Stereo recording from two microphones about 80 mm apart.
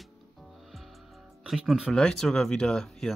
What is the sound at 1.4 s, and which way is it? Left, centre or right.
Speech, centre.